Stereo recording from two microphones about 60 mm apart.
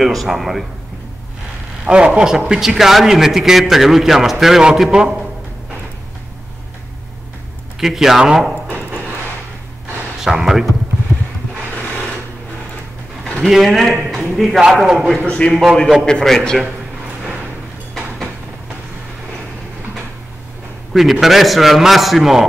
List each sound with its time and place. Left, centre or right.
0.0 s a man's voice: centre
1.9 s speech: centre
2.3 s a man's voice: centre
7.8 s a man's voice: centre
10.2 s speech: centre
13.5 s a man's voice: centre
15.2 s a man's voice: centre
15.5 s a man's voice: centre
16.1 s a man's voice: centre
20.9 s a man's voice: centre